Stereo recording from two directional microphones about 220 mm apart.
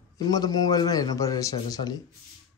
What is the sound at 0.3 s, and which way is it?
Speech, 20° left (ahead or behind).